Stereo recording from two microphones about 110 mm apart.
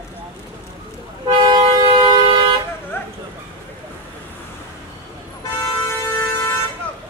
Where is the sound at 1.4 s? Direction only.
40° right (ahead or behind).